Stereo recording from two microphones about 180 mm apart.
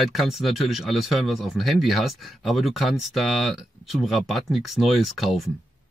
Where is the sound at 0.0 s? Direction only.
Centre (ahead or behind).